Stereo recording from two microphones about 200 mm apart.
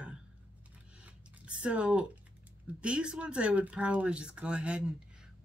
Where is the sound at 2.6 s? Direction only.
5° right (ahead or behind).